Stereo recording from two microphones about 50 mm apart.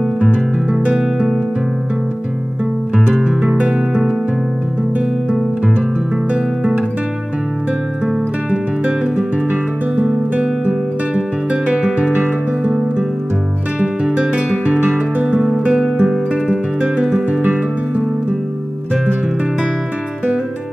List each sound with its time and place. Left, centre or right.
0.2 s music: right
3.4 s music: right
8.5 s music: right
10.3 s guitar: right
14.1 s guitar: centre
14.9 s music: right
15.7 s music: centre
16.8 s music: right